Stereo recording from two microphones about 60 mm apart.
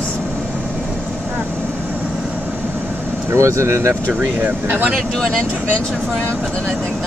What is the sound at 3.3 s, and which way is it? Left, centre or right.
Speech, right.